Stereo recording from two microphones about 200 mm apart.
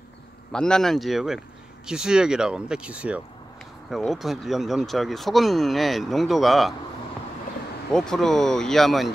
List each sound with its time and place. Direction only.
0.5 s speech: 5° left (ahead or behind)
7.9 s speech: 5° left (ahead or behind)